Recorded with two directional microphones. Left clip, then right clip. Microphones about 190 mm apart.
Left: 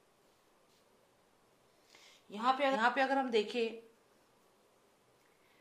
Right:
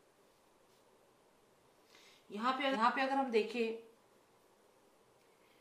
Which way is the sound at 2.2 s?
45° left (ahead or behind).